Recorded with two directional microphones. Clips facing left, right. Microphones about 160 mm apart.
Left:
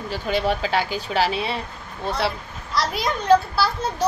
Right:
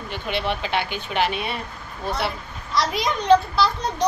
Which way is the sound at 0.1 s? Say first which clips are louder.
Left 3 dB; 40° left (ahead or behind).